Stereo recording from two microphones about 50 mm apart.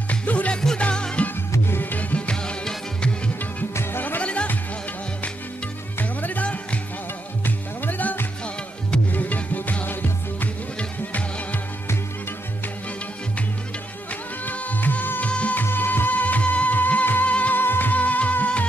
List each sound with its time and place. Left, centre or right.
0.1 s music: left
0.6 s music: centre
1.7 s music: left; by 3.1 s centre
4.2 s music: left
5.9 s music: left
14.4 s music: left
15.6 s music: left
17.6 s music: left